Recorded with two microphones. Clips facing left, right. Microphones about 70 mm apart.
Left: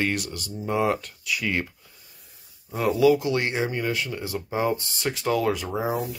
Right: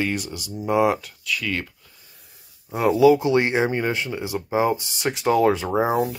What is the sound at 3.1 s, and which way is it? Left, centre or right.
Speech, right.